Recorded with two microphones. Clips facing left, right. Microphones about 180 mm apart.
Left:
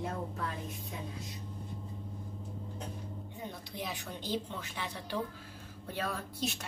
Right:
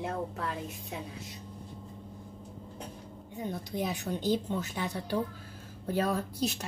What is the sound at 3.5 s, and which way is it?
A woman's voice, 45° right (ahead or behind).